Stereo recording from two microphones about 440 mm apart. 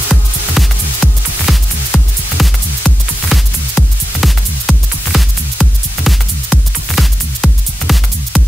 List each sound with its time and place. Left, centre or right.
0.1 s music: centre